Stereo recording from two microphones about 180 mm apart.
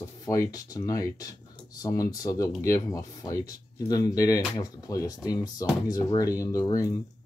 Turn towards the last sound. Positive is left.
turn(degrees=20)  # may be behind; listen again after turning